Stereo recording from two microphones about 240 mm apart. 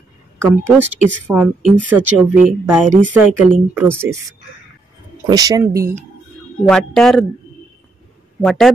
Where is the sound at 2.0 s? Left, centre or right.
Right.